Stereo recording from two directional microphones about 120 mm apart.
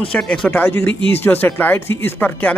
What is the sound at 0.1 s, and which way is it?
Speech, 10° left (ahead or behind).